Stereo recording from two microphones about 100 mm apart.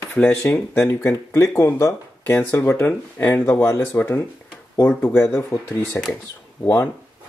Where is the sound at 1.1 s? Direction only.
30° left (ahead or behind).